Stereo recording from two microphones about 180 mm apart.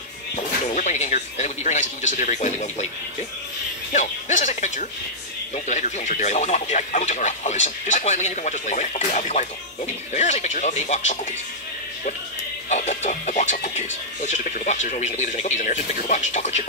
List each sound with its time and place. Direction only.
0.4 s speech: 40° left (ahead or behind)
3.9 s speech: 45° left (ahead or behind)
12.6 s speech: 40° left (ahead or behind)